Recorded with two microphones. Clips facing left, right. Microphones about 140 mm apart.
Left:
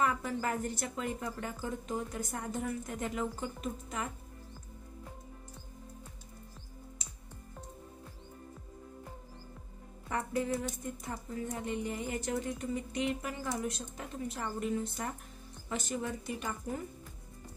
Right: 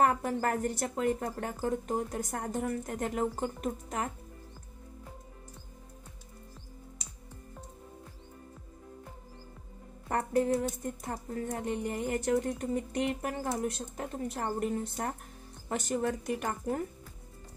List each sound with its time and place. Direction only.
0.0 s speech: 50° right (ahead or behind)
10.0 s a woman's voice: 45° right (ahead or behind)
15.7 s a woman's voice: 55° right (ahead or behind)